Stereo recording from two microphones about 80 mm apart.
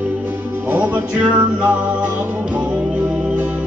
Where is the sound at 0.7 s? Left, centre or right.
Centre.